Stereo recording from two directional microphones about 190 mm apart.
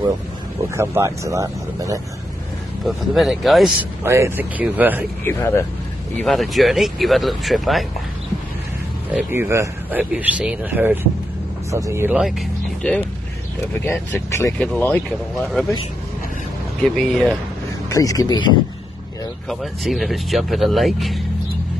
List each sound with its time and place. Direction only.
0.7 s speech: 15° right (ahead or behind)
2.8 s speech: centre (ahead or behind)
4.0 s speech: 15° right (ahead or behind)
5.2 s speech: 15° left (ahead or behind)
6.1 s speech: centre (ahead or behind)
9.1 s speech: 10° right (ahead or behind)
13.7 s speech: 15° left (ahead or behind)
16.8 s speech: centre (ahead or behind)
17.8 s speech: 15° left (ahead or behind)
19.5 s speech: centre (ahead or behind)